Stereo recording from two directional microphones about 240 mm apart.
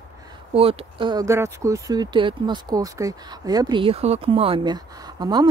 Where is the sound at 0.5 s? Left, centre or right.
Right.